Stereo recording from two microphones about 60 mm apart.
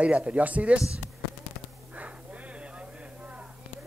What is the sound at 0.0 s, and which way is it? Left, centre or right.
Speech, centre.